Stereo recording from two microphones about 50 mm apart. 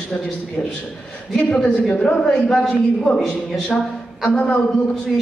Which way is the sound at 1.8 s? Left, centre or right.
Centre.